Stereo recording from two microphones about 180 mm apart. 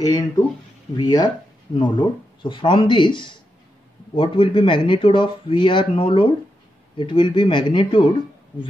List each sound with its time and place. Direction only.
0.9 s speech: 25° left (ahead or behind)